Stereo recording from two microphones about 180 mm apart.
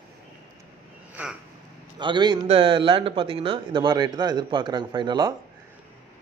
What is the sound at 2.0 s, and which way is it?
Speech, 25° right (ahead or behind).